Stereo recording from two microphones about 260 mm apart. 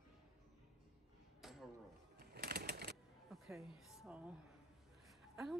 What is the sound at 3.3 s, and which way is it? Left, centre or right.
A woman's voice, centre.